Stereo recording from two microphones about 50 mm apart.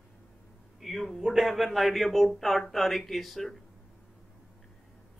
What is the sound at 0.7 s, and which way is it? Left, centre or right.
Speech, centre.